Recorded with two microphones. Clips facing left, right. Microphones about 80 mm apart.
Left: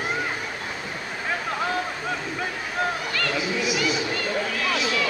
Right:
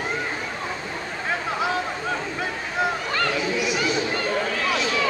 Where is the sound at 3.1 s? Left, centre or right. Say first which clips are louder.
Right 3 dB; right.